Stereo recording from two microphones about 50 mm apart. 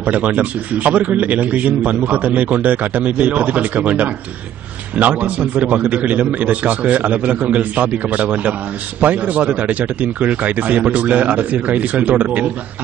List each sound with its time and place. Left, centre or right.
0.0 s a man's voice: right